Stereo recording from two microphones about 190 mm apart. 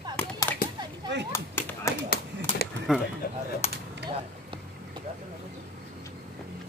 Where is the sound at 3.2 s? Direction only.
55° left (ahead or behind).